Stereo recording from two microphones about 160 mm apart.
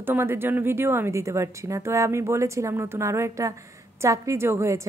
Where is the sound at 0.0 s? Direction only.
15° right (ahead or behind).